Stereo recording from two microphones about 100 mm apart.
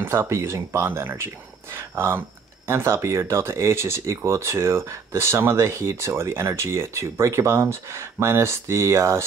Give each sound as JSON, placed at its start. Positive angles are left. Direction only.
{"t": 0.0, "sound": "speech", "side_deg": -25}